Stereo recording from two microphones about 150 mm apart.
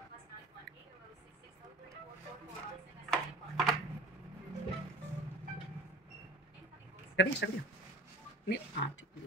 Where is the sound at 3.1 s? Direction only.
Centre (ahead or behind).